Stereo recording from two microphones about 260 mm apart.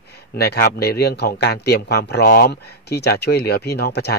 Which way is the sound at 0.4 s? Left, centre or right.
Left.